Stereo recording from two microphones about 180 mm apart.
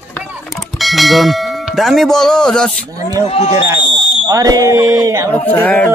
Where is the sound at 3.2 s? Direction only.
35° left (ahead or behind).